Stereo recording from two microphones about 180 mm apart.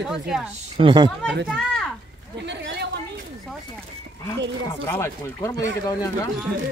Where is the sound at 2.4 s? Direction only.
70° right (ahead or behind).